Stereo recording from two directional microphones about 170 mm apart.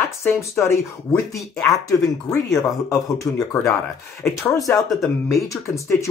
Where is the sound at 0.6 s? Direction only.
15° left (ahead or behind).